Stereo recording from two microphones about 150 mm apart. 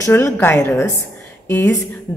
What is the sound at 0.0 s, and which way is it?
A woman's voice, 15° left (ahead or behind).